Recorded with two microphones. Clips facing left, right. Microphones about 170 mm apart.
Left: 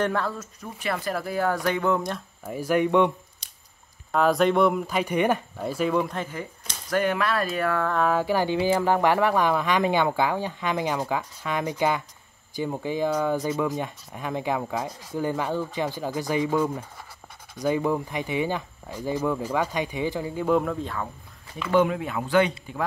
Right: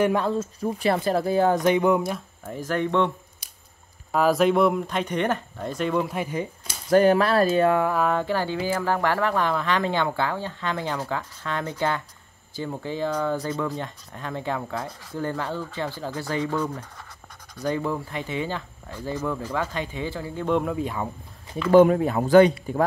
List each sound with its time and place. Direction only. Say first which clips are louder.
0.0 s speech: right 4 dB; 15° right (ahead or behind)
2.4 s speech: left 4 dB; 10° left (ahead or behind)
4.1 s speech: right 1 dB; 5° right (ahead or behind)
6.1 s speech: right 4 dB; 20° right (ahead or behind)
6.9 s speech: right 6 dB; 35° right (ahead or behind)
7.9 s speech: even; centre (ahead or behind); by 20.4 s 15° left (ahead or behind)
20.4 s speech: left 1 dB; centre (ahead or behind)
20.7 s speech: right 3 dB; 15° right (ahead or behind)
21.7 s speech: right 6 dB; 40° right (ahead or behind)